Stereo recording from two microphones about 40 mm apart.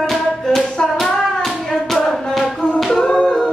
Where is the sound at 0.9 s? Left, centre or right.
Centre.